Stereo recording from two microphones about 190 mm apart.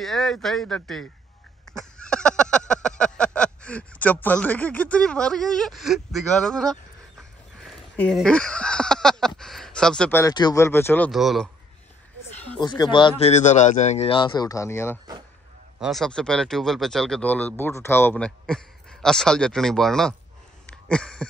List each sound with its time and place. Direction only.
0.0 s speech: centre (ahead or behind)
1.7 s a sound: 5° left (ahead or behind)
7.9 s speech: 5° left (ahead or behind)
9.4 s a sound: centre (ahead or behind)
10.2 s speech: 20° left (ahead or behind)
11.1 s speech: centre (ahead or behind)
12.5 s speech: 20° left (ahead or behind)
13.3 s speech: 40° left (ahead or behind); by 15.0 s 15° left (ahead or behind)
15.8 s speech: centre (ahead or behind)